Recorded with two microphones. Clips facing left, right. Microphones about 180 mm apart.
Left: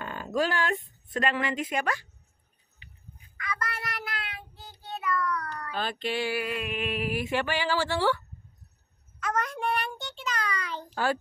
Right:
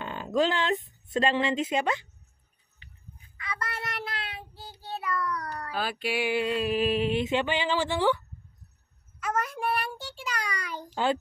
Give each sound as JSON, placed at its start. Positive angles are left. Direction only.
{"t": 0.0, "sound": "a sound", "side_deg": -20}
{"t": 1.1, "sound": "speech", "side_deg": -25}
{"t": 3.3, "sound": "child singing", "side_deg": -25}
{"t": 5.7, "sound": "speech", "side_deg": -10}
{"t": 6.3, "sound": "speech", "side_deg": -30}
{"t": 9.2, "sound": "a child's voice", "side_deg": -10}